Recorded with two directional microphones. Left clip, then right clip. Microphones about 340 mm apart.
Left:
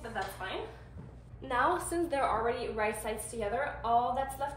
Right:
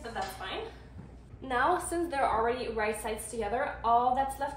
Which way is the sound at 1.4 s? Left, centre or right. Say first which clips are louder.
Right 2 dB; centre.